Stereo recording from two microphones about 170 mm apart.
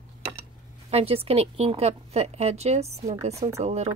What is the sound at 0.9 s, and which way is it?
A woman's voice, 35° right (ahead or behind).